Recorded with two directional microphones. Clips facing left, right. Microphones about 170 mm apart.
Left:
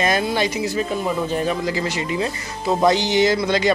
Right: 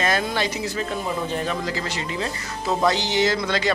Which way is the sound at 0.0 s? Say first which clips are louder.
Left 3 dB; 15° left (ahead or behind).